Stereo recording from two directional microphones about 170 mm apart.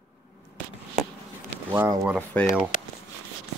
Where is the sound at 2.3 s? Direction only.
10° left (ahead or behind).